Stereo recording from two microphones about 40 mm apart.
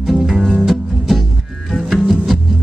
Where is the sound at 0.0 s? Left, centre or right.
Centre.